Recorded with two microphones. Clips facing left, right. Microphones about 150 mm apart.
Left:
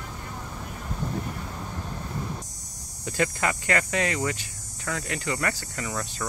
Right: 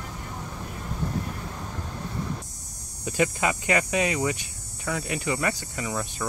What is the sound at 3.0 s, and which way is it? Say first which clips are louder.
Speech: right 2 dB; 15° right (ahead or behind).